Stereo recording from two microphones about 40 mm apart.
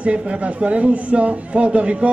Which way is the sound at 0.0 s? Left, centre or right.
Right.